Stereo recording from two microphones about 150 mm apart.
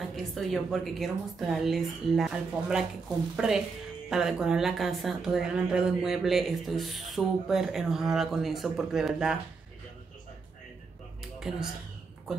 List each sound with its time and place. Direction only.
0.1 s a woman's voice: centre (ahead or behind)
11.3 s speech: 5° right (ahead or behind)